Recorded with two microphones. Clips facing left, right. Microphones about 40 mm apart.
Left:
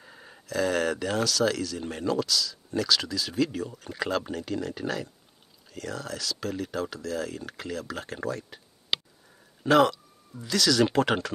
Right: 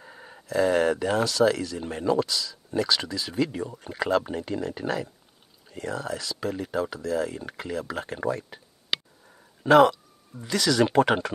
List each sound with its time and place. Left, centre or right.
0.0 s a sound: centre
0.5 s speech: centre
9.6 s speech: centre